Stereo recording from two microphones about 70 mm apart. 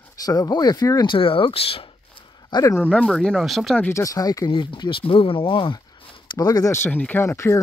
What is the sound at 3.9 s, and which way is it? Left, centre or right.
Speech, left.